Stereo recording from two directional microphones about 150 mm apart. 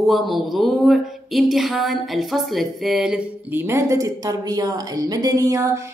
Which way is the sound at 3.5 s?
15° right (ahead or behind).